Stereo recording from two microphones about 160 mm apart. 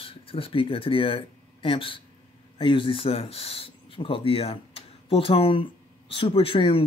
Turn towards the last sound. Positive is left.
turn(degrees=35)  # may be behind; listen again after turning